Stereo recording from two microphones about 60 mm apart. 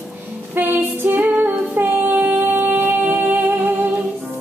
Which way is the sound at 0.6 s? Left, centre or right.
Right.